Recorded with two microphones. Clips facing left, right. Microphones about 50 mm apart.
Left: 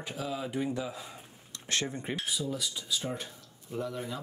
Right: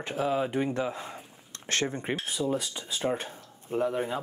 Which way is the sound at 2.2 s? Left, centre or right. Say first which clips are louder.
Right 5 dB; right.